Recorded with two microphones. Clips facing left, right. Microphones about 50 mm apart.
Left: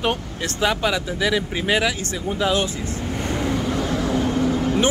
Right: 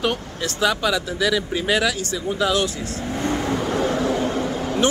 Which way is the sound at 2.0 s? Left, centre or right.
Left.